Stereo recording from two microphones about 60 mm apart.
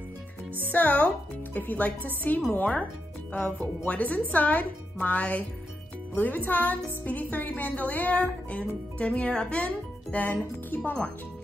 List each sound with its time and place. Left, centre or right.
0.7 s speech: left
10.1 s speech: left
10.8 s speech: centre